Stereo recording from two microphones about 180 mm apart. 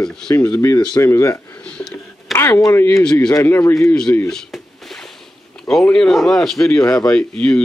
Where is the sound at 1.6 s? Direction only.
5° left (ahead or behind).